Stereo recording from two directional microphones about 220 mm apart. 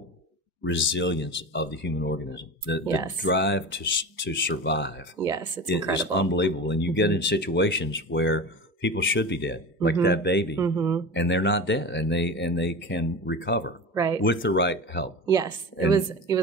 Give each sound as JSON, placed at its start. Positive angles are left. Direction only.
{"t": 0.7, "sound": "speech", "side_deg": 60}
{"t": 2.8, "sound": "speech", "side_deg": -15}
{"t": 3.2, "sound": "speech", "side_deg": 55}
{"t": 5.2, "sound": "speech", "side_deg": -15}
{"t": 5.9, "sound": "speech", "side_deg": 55}
{"t": 10.5, "sound": "speech", "side_deg": -15}
{"t": 11.1, "sound": "speech", "side_deg": 55}
{"t": 13.9, "sound": "speech", "side_deg": -15}
{"t": 14.2, "sound": "speech", "side_deg": 55}
{"t": 15.2, "sound": "speech", "side_deg": -15}